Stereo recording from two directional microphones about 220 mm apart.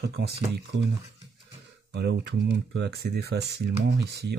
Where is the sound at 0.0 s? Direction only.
50° right (ahead or behind).